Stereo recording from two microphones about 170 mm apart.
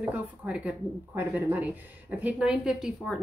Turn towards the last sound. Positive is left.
turn(degrees=0)  # may be behind; listen again after turning